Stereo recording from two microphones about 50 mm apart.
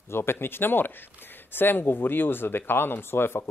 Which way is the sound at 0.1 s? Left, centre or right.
Left.